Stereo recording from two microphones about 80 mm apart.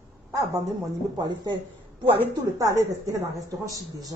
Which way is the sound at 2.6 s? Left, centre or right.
Right.